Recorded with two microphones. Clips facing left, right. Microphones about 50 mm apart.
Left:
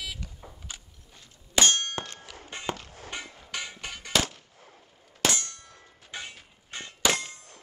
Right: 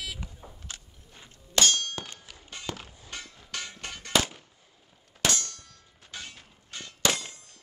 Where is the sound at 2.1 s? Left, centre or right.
Left.